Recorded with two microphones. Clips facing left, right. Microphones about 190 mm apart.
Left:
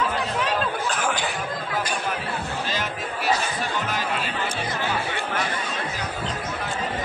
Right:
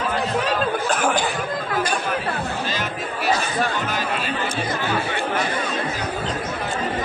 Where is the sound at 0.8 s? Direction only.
50° right (ahead or behind).